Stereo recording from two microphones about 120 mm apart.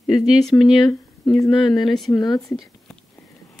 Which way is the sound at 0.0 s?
5° right (ahead or behind).